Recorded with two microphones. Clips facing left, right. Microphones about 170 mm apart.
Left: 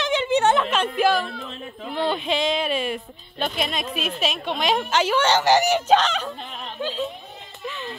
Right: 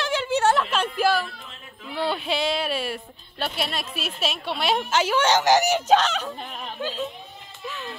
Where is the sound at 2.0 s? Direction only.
10° right (ahead or behind).